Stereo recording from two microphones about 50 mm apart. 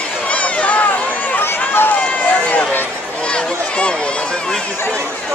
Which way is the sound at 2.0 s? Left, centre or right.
Left.